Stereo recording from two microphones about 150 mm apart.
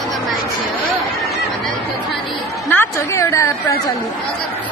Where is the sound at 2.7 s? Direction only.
15° left (ahead or behind).